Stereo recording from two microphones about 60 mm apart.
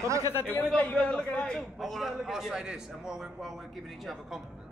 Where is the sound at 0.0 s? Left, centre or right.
Right.